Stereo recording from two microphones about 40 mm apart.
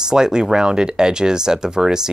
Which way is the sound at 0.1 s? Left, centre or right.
Centre.